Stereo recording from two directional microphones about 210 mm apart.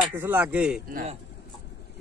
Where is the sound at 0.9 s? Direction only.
30° right (ahead or behind).